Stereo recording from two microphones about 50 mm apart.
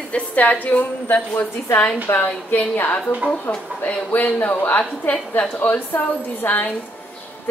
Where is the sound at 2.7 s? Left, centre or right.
Left.